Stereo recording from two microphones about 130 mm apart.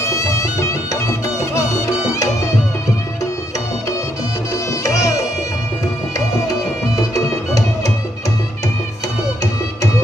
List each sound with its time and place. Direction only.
0.0 s music: 25° left (ahead or behind)
4.8 s music: 25° left (ahead or behind)
7.2 s music: 25° left (ahead or behind)